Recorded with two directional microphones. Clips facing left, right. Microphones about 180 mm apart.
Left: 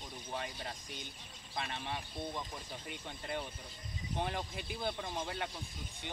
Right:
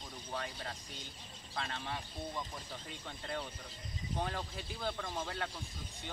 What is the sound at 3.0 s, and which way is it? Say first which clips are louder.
Speech: even; 15° left (ahead or behind).